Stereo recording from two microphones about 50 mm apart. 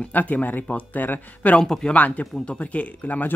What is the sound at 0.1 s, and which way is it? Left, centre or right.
Speech, left.